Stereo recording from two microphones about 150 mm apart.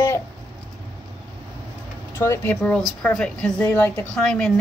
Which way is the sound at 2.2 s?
15° left (ahead or behind).